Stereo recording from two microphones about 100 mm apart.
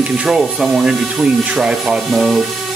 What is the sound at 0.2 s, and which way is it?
Ratchet, 5° right (ahead or behind).